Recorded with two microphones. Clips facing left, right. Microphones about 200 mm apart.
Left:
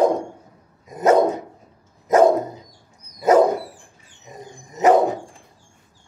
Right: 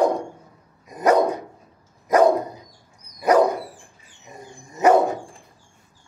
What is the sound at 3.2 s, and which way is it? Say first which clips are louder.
Dog: left 2 dB; 25° left (ahead or behind).